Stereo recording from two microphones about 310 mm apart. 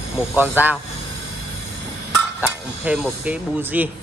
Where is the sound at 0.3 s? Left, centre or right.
Centre.